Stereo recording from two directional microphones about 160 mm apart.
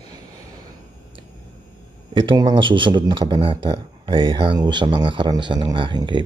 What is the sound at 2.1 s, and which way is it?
Speech, 25° right (ahead or behind).